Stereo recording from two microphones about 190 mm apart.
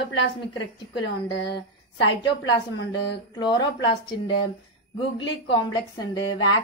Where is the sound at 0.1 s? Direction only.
70° left (ahead or behind).